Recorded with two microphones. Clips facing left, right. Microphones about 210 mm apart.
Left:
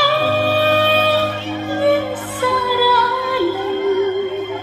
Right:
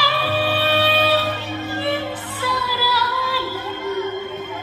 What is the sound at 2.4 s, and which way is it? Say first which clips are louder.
Music: left 8 dB; 50° left (ahead or behind).